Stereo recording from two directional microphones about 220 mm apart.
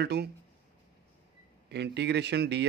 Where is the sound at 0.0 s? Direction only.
50° right (ahead or behind).